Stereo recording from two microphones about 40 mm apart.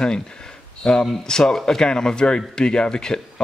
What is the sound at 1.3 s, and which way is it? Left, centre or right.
Speech, centre.